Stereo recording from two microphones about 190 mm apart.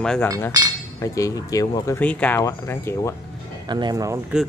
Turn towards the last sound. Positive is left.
turn(degrees=-20)  # may be behind; listen again after turning